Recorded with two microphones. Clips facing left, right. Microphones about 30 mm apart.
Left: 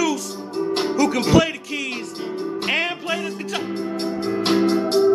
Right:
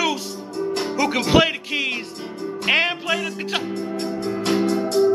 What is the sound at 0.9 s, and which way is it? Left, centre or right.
Speech, right.